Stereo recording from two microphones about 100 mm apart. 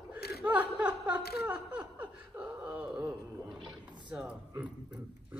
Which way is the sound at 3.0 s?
30° right (ahead or behind).